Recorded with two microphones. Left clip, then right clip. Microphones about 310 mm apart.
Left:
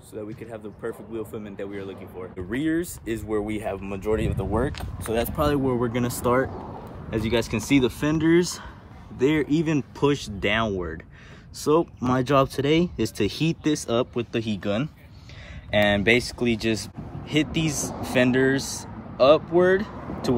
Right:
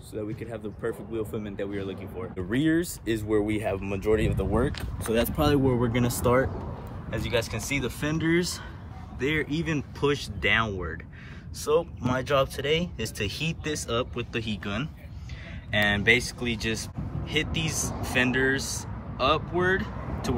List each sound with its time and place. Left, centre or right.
0.1 s speech: centre
7.1 s speech: left; by 20.3 s centre